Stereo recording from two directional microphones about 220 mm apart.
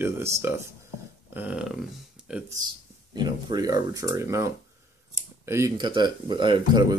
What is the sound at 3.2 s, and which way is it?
Speech, 20° right (ahead or behind).